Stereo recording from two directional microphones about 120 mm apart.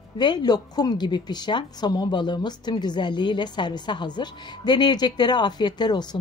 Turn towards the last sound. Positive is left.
turn(degrees=35)  # may be behind; listen again after turning